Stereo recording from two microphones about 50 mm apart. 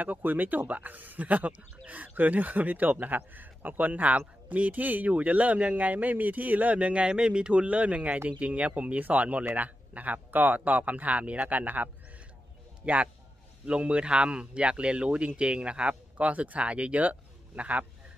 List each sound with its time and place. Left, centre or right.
0.0 s a man's voice: right